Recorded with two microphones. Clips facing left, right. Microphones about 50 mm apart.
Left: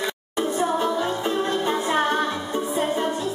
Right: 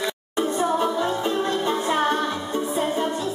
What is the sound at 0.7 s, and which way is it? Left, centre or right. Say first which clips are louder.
Music: right 1 dB; centre.